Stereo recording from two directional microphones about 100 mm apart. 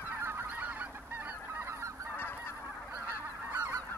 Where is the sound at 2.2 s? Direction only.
20° left (ahead or behind).